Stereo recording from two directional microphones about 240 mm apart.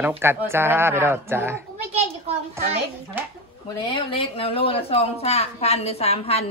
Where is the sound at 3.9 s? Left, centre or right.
Left.